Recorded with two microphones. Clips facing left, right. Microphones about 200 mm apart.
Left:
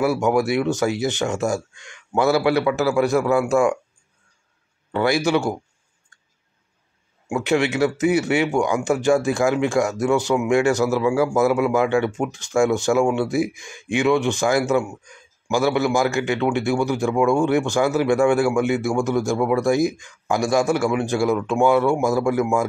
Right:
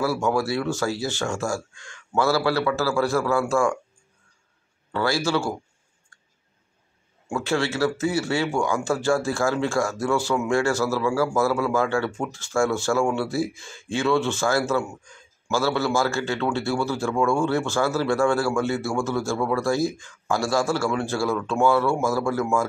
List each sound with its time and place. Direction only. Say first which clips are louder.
0.0 s speech: left 4 dB; 20° left (ahead or behind)
4.9 s speech: left 4 dB; 20° left (ahead or behind)
7.2 s speech: left 4 dB; 20° left (ahead or behind)